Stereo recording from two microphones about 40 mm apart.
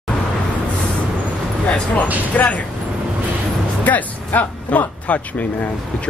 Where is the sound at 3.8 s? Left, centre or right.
Left.